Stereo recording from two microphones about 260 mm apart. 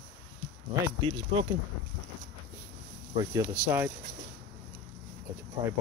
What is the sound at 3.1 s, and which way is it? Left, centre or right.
Speech, centre.